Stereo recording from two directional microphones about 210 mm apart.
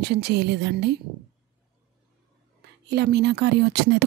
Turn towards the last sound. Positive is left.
turn(degrees=-50)  # may be behind; listen again after turning